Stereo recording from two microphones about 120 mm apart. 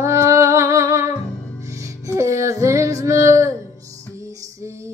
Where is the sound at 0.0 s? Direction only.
25° right (ahead or behind).